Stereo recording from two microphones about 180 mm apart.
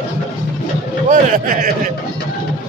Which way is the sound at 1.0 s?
50° right (ahead or behind).